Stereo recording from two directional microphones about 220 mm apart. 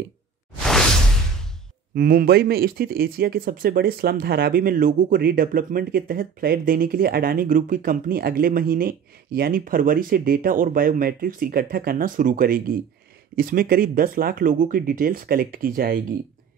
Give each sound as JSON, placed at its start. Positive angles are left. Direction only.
{"t": 2.0, "sound": "speech", "side_deg": -45}